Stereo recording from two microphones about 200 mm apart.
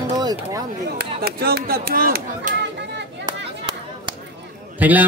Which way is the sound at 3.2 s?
20° right (ahead or behind).